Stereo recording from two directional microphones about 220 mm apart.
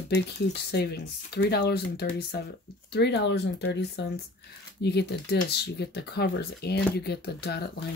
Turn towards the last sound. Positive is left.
turn(degrees=45)  # may be behind; listen again after turning